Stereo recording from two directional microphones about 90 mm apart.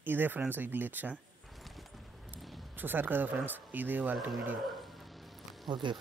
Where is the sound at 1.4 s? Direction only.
Centre (ahead or behind).